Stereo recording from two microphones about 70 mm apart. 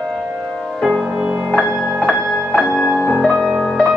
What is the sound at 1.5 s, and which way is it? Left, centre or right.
Music, centre.